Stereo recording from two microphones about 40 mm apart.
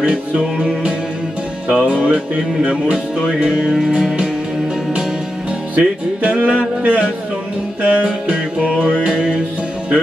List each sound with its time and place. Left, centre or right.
0.0 s music: right
1.8 s music: right
2.9 s music: centre
5.8 s music: right